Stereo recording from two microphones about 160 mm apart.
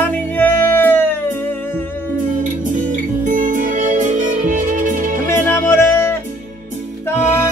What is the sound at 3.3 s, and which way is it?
Music, 55° right (ahead or behind).